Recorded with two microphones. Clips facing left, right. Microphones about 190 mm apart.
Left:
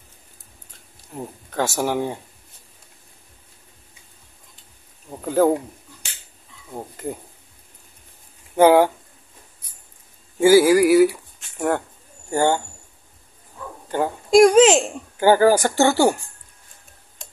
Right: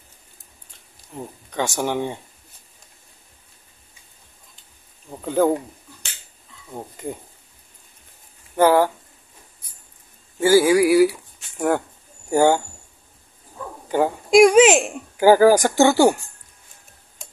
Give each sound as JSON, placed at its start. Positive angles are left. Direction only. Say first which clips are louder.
{"t": 1.1, "sound": "speech", "louder": "left 1 dB", "side_deg": 5}
{"t": 5.2, "sound": "speech", "louder": "left 1 dB", "side_deg": 5}
{"t": 6.7, "sound": "speech", "louder": "left 1 dB", "side_deg": 5}
{"t": 8.5, "sound": "speech", "louder": "left 2 dB", "side_deg": 15}
{"t": 10.4, "sound": "speech", "louder": "left 2 dB", "side_deg": 5}
{"t": 13.8, "sound": "speech", "louder": "right 3 dB", "side_deg": -10}